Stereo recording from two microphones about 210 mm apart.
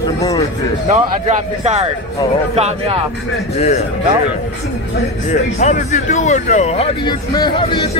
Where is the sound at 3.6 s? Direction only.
30° left (ahead or behind).